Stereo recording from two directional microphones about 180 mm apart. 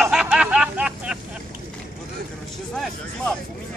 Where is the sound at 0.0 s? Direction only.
5° right (ahead or behind).